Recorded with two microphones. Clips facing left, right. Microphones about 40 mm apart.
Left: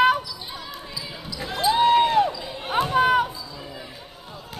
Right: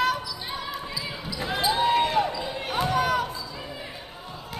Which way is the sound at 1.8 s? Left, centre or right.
Centre.